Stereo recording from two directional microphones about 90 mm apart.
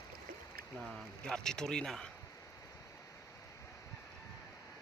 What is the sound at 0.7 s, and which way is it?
Speech, centre (ahead or behind).